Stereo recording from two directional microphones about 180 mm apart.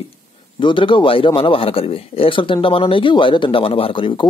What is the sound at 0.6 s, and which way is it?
A man's voice, 30° left (ahead or behind).